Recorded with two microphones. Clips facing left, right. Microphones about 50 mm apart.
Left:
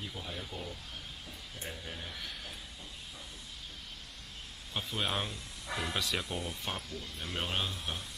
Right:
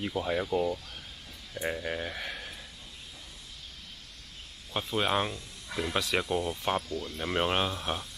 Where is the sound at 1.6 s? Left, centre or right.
Right.